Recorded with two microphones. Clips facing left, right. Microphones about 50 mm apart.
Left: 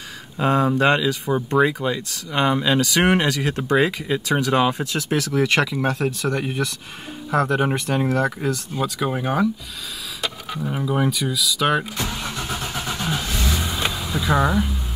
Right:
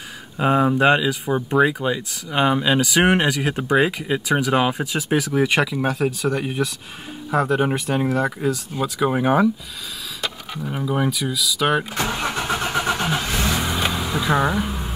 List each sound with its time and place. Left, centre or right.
0.4 s speech: centre
9.1 s speech: centre
10.2 s speech: centre
11.9 s vehicle: right
13.9 s a sound: right